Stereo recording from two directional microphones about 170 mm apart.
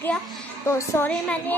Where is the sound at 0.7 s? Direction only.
15° left (ahead or behind).